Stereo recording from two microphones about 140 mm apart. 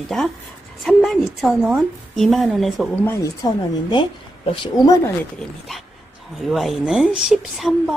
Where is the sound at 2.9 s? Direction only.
15° left (ahead or behind).